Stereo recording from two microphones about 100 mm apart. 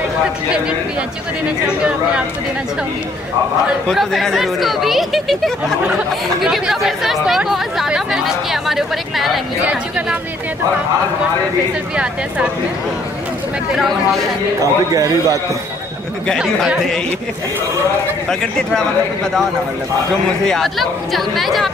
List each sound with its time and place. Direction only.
1.7 s speech: 10° right (ahead or behind)
3.9 s speech: centre (ahead or behind)
13.7 s speech: centre (ahead or behind)
14.6 s a man's voice: 35° right (ahead or behind)
16.3 s speech: centre (ahead or behind)
18.3 s speech: 5° left (ahead or behind)
20.4 s speech: 5° left (ahead or behind)